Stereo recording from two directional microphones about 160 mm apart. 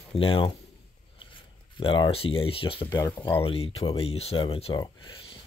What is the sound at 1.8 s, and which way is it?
Speech, 35° left (ahead or behind).